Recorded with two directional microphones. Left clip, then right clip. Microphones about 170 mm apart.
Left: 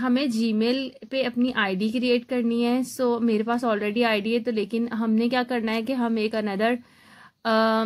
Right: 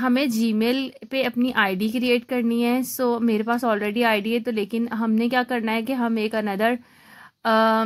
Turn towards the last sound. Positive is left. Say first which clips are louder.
# right 3 dB
turn(degrees=-20)  # may be behind; listen again after turning